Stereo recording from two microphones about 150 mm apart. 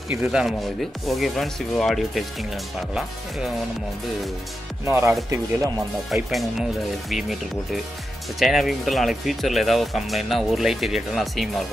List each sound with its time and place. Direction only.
0.1 s speech: 10° right (ahead or behind)
4.8 s speech: 20° right (ahead or behind)
6.0 s speech: centre (ahead or behind)